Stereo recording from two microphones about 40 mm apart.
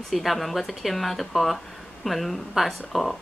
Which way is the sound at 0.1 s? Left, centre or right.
Centre.